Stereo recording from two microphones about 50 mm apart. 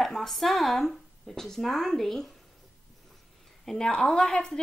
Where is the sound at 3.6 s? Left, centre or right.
Centre.